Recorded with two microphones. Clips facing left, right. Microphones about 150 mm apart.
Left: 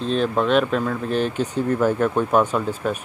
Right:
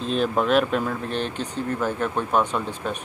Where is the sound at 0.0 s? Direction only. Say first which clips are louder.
Left 2 dB; 5° right (ahead or behind).